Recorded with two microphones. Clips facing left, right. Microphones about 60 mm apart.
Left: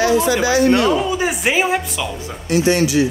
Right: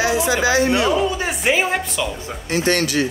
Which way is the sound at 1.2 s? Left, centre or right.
Centre.